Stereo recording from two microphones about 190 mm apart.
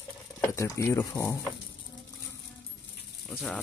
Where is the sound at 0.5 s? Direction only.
15° left (ahead or behind).